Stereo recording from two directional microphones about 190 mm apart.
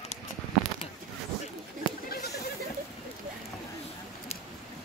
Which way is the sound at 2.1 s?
60° left (ahead or behind).